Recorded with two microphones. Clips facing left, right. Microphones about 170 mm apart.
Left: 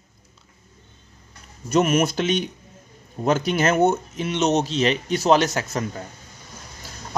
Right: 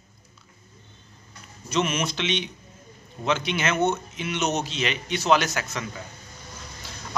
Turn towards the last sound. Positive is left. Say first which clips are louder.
# left 5 dB
turn(degrees=40)  # may be behind; listen again after turning